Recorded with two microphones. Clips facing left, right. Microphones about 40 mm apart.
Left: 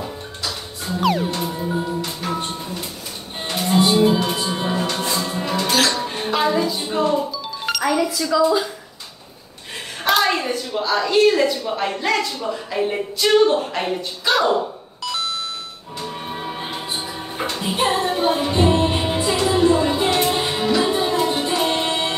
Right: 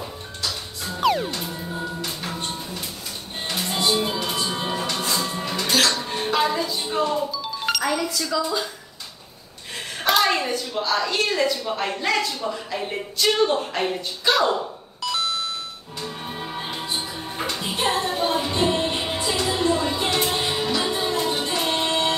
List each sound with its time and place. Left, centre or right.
1.0 s music: centre
1.4 s a man's voice: centre
2.2 s music: left
4.2 s music: left
4.5 s music: centre
5.7 s music: centre
7.6 s a man's voice: centre
10.0 s a sound: centre
10.5 s a man's voice: centre
15.0 s doorbell: centre
16.0 s music: centre
17.7 s music: left